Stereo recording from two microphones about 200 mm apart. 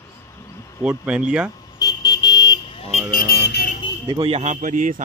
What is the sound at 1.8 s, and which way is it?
Vehicle, 20° left (ahead or behind).